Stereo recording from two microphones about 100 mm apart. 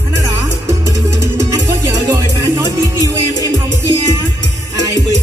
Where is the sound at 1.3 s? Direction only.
35° right (ahead or behind).